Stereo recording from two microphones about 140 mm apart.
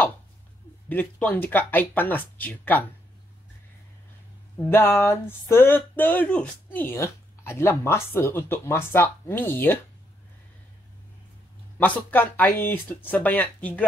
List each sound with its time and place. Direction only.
0.8 s speech: 15° left (ahead or behind)
4.6 s speech: 15° left (ahead or behind)
11.8 s speech: 15° left (ahead or behind)